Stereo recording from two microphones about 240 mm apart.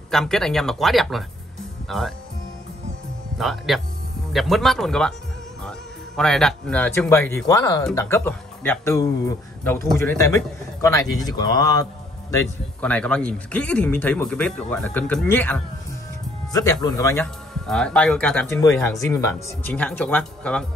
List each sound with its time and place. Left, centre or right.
0.1 s speech: centre
3.3 s a man's voice: centre